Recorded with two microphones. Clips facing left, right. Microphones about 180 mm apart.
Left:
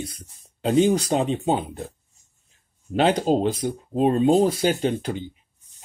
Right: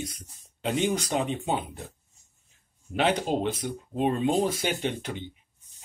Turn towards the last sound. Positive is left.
turn(degrees=35)  # may be behind; listen again after turning